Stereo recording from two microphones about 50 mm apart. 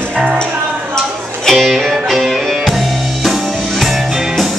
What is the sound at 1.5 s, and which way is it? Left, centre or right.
Music, centre.